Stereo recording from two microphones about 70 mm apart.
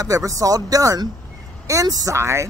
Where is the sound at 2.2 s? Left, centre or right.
Right.